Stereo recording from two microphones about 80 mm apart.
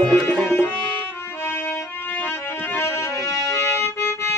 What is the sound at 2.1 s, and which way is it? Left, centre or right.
Music, left.